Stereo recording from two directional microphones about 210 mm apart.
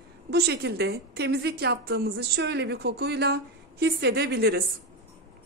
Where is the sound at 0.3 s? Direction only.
50° right (ahead or behind).